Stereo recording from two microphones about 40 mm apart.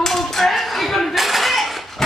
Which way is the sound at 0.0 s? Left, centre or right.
Centre.